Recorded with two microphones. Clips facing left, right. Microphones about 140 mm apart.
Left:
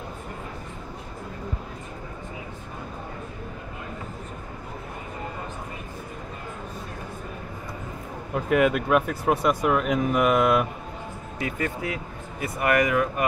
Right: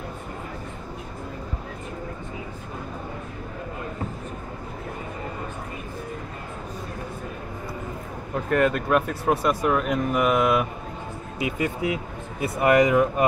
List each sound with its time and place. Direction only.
8.5 s speech: 5° left (ahead or behind)
11.4 s speech: 15° right (ahead or behind)